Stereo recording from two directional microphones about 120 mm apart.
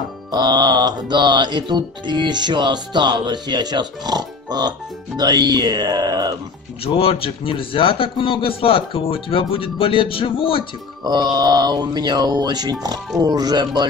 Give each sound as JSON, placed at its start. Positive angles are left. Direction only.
{"t": 0.3, "sound": "music", "side_deg": -35}
{"t": 6.8, "sound": "a man's voice", "side_deg": 55}
{"t": 11.1, "sound": "music", "side_deg": -35}